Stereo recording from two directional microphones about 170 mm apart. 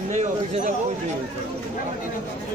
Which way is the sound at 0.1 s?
40° right (ahead or behind).